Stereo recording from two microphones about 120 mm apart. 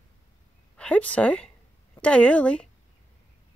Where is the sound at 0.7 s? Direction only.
10° left (ahead or behind).